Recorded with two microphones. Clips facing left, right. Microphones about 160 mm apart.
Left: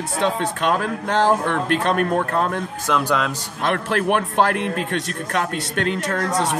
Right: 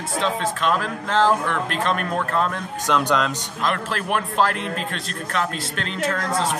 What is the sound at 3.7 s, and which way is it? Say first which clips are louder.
A man's voice: left 5 dB; 55° left (ahead or behind).